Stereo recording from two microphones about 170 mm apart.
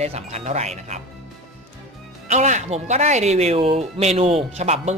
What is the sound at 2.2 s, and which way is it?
Speech, 45° right (ahead or behind).